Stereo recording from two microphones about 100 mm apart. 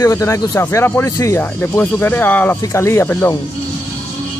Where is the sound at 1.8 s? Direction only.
20° left (ahead or behind).